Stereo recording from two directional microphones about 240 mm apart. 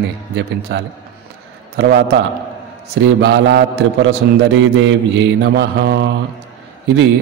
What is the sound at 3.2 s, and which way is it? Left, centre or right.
A man's voice, right.